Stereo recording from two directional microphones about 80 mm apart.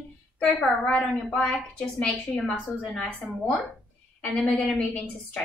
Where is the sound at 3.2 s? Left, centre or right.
Centre.